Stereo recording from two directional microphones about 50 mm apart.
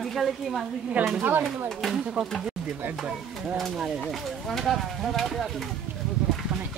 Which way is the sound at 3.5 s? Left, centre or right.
Centre.